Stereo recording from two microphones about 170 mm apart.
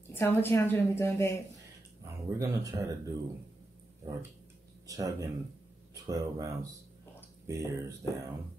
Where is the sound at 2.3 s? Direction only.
15° right (ahead or behind).